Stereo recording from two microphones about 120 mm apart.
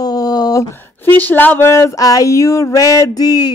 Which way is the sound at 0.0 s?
35° left (ahead or behind).